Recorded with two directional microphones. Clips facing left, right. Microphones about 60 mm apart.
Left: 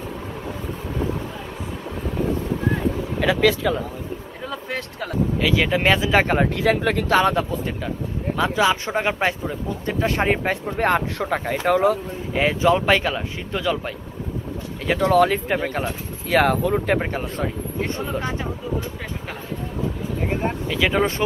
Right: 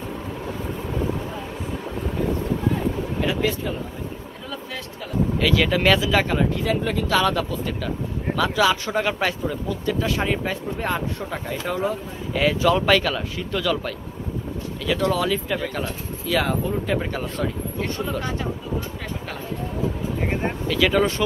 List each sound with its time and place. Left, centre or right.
3.2 s speech: left
4.5 s speech: left
5.4 s speech: centre; by 6.5 s left
6.5 s speech: left
7.1 s speech: left
12.4 s speech: left
15.0 s speech: left
17.1 s speech: left
20.6 s speech: centre